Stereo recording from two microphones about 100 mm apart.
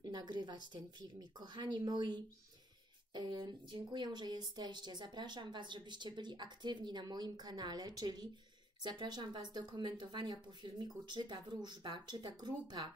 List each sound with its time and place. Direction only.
0.0 s a woman's voice: 45° right (ahead or behind)